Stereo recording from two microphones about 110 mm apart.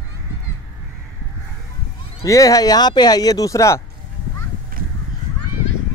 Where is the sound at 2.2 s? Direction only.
30° left (ahead or behind).